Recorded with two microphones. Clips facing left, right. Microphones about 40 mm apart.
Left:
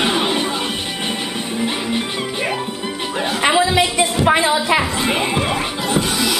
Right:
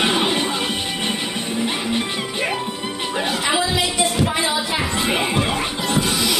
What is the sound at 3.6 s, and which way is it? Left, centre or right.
Music, left.